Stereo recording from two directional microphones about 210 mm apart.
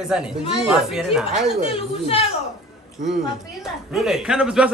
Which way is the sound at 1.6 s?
25° left (ahead or behind).